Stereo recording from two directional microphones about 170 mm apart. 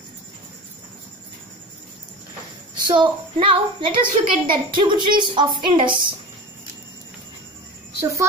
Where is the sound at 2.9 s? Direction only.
30° right (ahead or behind).